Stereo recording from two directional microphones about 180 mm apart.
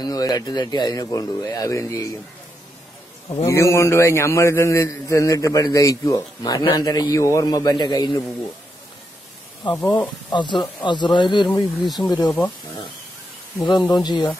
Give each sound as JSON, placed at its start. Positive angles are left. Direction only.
{"t": 0.0, "sound": "speech", "side_deg": 20}
{"t": 3.4, "sound": "a man's voice", "side_deg": 15}
{"t": 9.8, "sound": "a man's voice", "side_deg": 10}
{"t": 10.3, "sound": "speech", "side_deg": 25}
{"t": 13.6, "sound": "speech", "side_deg": 25}